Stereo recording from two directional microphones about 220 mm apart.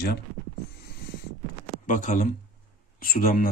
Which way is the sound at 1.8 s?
35° left (ahead or behind).